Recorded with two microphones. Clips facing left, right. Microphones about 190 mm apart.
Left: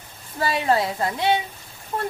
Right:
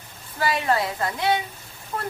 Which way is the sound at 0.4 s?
25° left (ahead or behind).